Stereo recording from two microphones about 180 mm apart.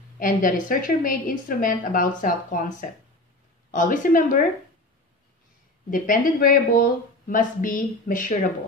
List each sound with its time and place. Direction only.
0.2 s a woman's voice: 50° left (ahead or behind)
5.9 s a woman's voice: 50° left (ahead or behind)